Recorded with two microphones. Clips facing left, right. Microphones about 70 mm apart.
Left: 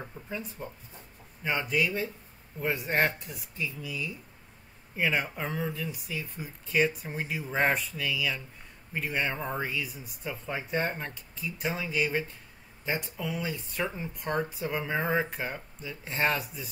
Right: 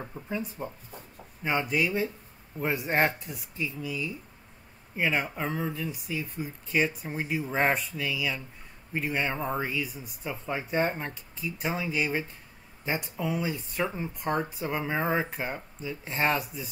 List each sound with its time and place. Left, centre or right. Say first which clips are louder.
0.0 s speech: right 4 dB; centre
13.3 s speech: right 3 dB; centre